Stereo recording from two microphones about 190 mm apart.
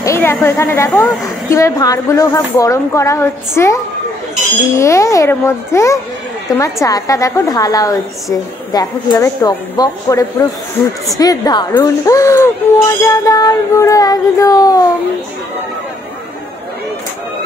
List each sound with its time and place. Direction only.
0.0 s a woman's voice: 15° left (ahead or behind)